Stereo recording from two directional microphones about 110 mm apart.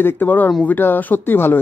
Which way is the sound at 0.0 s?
15° left (ahead or behind).